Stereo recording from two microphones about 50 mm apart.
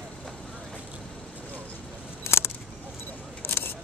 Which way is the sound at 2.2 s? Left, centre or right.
Left.